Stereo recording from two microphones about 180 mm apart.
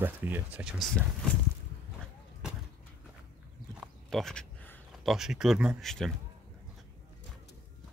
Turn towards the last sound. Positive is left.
turn(degrees=0)  # may be behind; listen again after turning